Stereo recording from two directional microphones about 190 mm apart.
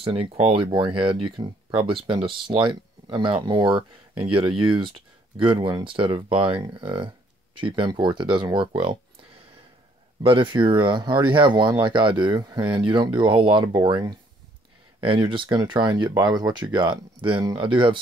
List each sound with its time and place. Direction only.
0.0 s speech: 30° right (ahead or behind)
10.2 s speech: 25° right (ahead or behind)